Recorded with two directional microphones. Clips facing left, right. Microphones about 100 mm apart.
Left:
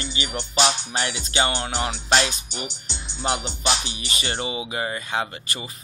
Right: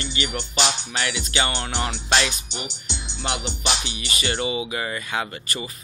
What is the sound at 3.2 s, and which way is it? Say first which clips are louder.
Speech: left 2 dB; 40° left (ahead or behind).